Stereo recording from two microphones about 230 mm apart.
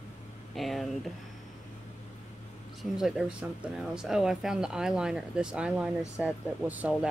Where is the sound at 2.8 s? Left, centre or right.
Centre.